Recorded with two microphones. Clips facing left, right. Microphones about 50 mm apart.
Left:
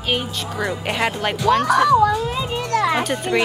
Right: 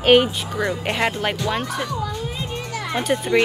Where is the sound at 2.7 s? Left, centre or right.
Left.